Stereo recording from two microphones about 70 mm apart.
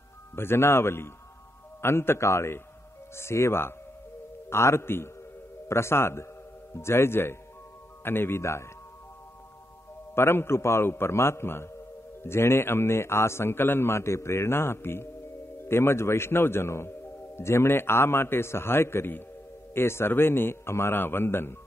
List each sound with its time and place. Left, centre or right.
0.4 s a man's voice: left
10.1 s a man's voice: left